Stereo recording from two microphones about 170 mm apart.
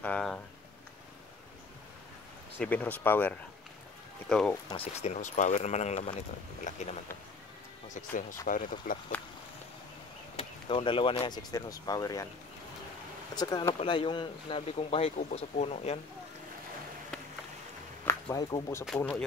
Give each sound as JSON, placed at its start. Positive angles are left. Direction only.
{"t": 0.0, "sound": "a sound", "side_deg": 5}
{"t": 2.6, "sound": "speech", "side_deg": 10}
{"t": 4.7, "sound": "speech", "side_deg": 40}
{"t": 10.3, "sound": "speech", "side_deg": 30}
{"t": 13.3, "sound": "speech", "side_deg": 25}
{"t": 18.0, "sound": "speech", "side_deg": 20}
{"t": 18.9, "sound": "speech", "side_deg": 5}